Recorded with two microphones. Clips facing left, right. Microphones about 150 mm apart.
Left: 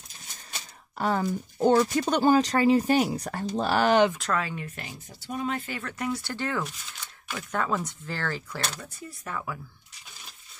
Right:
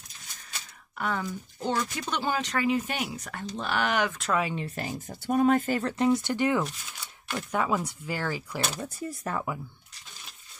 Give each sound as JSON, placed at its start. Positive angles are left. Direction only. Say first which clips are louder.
{"t": 0.9, "sound": "speech", "louder": "left 5 dB", "side_deg": 35}
{"t": 4.4, "sound": "speech", "louder": "right 3 dB", "side_deg": -20}
{"t": 4.6, "sound": "speech", "louder": "right 7 dB", "side_deg": -40}
{"t": 5.9, "sound": "speech", "louder": "right 6 dB", "side_deg": -25}
{"t": 8.7, "sound": "speech", "louder": "right 7 dB", "side_deg": -40}